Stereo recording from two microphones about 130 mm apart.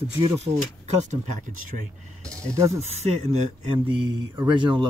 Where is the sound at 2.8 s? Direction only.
55° right (ahead or behind).